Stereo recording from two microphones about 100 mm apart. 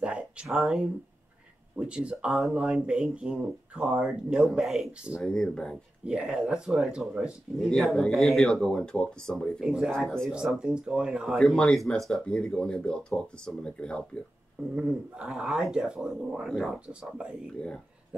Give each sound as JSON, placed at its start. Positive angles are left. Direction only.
{"t": 0.0, "sound": "a sound", "side_deg": -10}
{"t": 1.8, "sound": "speech", "side_deg": -10}
{"t": 5.2, "sound": "speech", "side_deg": 5}
{"t": 6.0, "sound": "speech", "side_deg": -10}
{"t": 9.6, "sound": "speech", "side_deg": -5}
{"t": 9.9, "sound": "speech", "side_deg": 5}
{"t": 10.3, "sound": "speech", "side_deg": -5}
{"t": 11.3, "sound": "speech", "side_deg": 5}
{"t": 14.8, "sound": "speech", "side_deg": -10}